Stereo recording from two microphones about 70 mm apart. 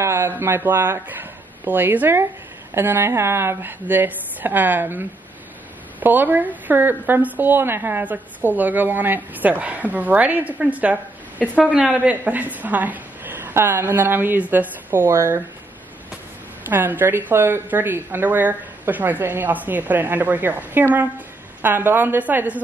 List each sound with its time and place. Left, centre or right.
0.0 s speech: right
15.0 s speech: right
16.6 s speech: right